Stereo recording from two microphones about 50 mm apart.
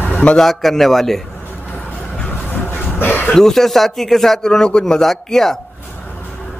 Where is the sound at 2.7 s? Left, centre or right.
Left.